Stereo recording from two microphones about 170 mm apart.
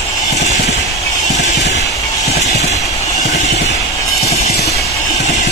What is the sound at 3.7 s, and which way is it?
Train, 20° left (ahead or behind).